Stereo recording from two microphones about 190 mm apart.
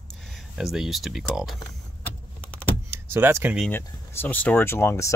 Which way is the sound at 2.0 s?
10° left (ahead or behind).